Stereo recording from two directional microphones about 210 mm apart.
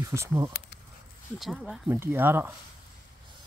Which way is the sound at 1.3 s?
Centre (ahead or behind).